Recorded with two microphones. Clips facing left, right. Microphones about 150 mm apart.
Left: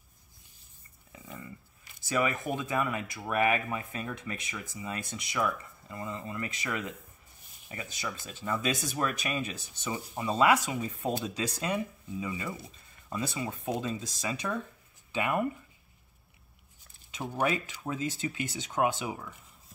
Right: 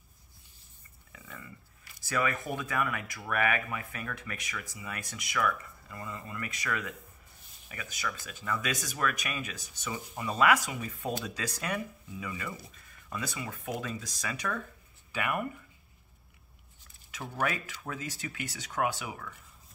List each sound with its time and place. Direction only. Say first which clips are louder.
1.1 s dog: left 4 dB; 20° left (ahead or behind)
2.0 s speech: left 2 dB; 20° left (ahead or behind)
17.1 s speech: left 3 dB; 20° left (ahead or behind)